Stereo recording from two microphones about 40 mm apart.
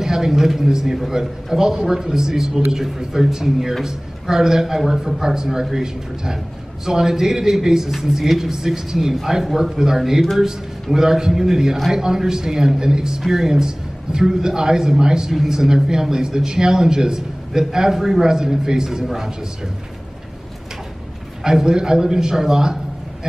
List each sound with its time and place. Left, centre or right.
0.0 s a man's voice: centre
12.0 s speech: centre
19.0 s a man's voice: centre
21.5 s speech: centre